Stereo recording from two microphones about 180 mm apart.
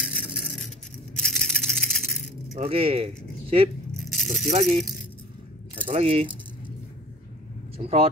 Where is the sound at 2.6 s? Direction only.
30° right (ahead or behind).